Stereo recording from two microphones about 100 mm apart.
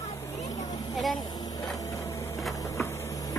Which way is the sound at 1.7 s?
35° left (ahead or behind).